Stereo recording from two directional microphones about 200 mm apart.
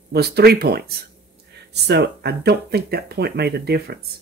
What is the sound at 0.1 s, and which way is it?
Speech, 55° right (ahead or behind).